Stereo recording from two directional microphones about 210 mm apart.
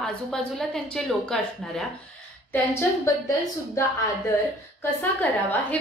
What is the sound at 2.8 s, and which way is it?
A woman's voice, 15° left (ahead or behind).